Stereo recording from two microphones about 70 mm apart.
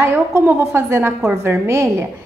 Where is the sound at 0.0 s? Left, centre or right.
Right.